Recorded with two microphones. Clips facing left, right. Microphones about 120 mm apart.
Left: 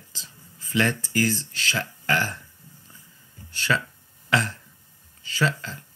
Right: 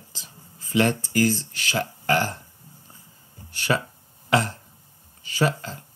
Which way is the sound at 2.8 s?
20° right (ahead or behind).